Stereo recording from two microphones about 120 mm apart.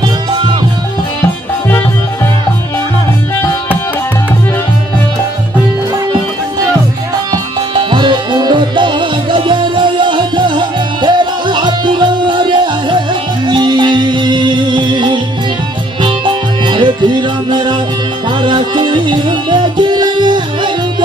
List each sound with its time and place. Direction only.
7.7 s music: 40° right (ahead or behind)